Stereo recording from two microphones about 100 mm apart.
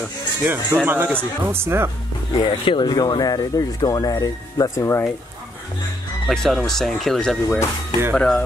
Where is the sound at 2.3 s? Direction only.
50° left (ahead or behind); by 5.0 s 30° left (ahead or behind).